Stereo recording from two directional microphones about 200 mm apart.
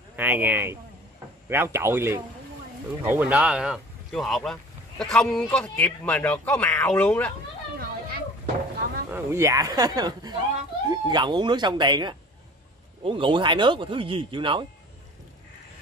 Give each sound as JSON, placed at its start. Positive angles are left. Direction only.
{"t": 0.1, "sound": "speech", "side_deg": -10}
{"t": 7.7, "sound": "a sound", "side_deg": -50}
{"t": 9.1, "sound": "speech", "side_deg": -15}